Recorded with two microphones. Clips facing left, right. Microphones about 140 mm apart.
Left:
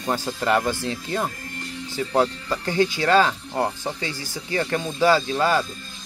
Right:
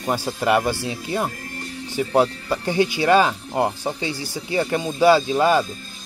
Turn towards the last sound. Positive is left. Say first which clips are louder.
# right 3 dB
turn(degrees=-15)  # may be behind; listen again after turning